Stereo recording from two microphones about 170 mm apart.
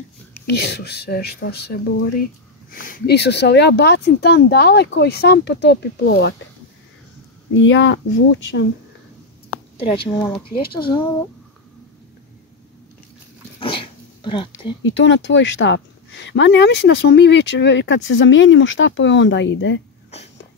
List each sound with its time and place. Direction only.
0.5 s speech: 75° left (ahead or behind)
2.7 s speech: 55° left (ahead or behind); by 6.3 s 75° left (ahead or behind)
7.5 s a woman's voice: 90° left
9.8 s a woman's voice: 35° left (ahead or behind)
13.6 s dog: 30° left (ahead or behind)
14.8 s a woman's voice: 90° left